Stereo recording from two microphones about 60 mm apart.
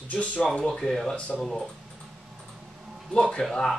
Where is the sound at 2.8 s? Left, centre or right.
Centre.